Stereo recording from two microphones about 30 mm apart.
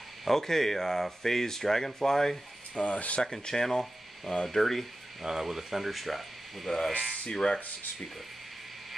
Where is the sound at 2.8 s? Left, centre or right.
Left.